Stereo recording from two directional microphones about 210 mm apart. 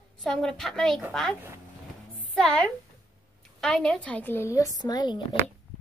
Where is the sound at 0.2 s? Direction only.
5° left (ahead or behind); by 5.2 s 20° left (ahead or behind).